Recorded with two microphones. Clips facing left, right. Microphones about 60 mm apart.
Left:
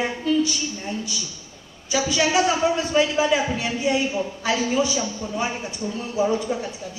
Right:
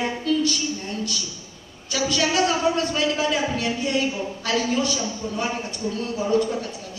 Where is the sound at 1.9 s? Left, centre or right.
Centre.